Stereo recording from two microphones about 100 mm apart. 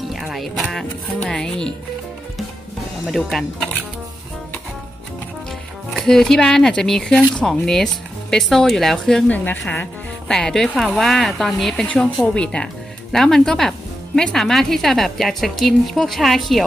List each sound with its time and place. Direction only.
0.1 s speech: centre (ahead or behind)
3.1 s speech: centre (ahead or behind)
5.9 s speech: 5° left (ahead or behind)
9.3 s a woman's voice: 15° left (ahead or behind)
10.2 s a woman's voice: 5° left (ahead or behind)